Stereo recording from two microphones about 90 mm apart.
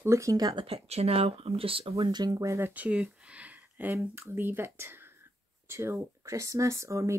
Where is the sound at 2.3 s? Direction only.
35° right (ahead or behind).